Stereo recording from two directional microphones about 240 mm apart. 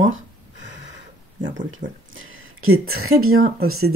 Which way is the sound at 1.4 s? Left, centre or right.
Right.